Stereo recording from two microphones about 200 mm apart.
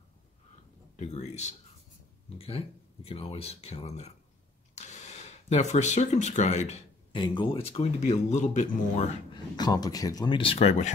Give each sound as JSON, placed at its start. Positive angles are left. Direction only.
{"t": 0.9, "sound": "speech", "side_deg": 35}
{"t": 9.3, "sound": "speech", "side_deg": 20}